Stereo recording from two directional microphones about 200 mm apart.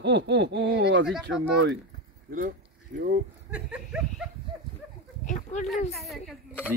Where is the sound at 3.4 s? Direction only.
5° right (ahead or behind).